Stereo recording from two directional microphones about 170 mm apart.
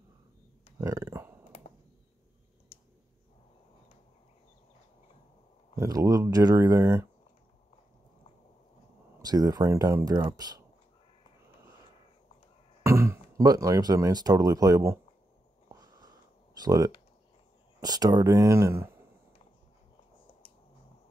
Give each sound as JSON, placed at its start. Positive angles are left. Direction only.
{"t": 0.7, "sound": "a sound", "side_deg": -15}
{"t": 5.8, "sound": "speech", "side_deg": -20}
{"t": 9.2, "sound": "speech", "side_deg": -20}
{"t": 12.8, "sound": "speech", "side_deg": -15}
{"t": 15.7, "sound": "a sound", "side_deg": -20}
{"t": 17.7, "sound": "speech", "side_deg": -20}